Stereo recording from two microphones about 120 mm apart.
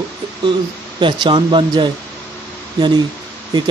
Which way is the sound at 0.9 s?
40° right (ahead or behind).